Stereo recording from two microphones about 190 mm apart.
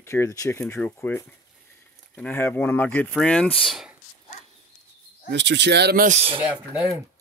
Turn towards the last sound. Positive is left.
turn(degrees=0)  # may be behind; listen again after turning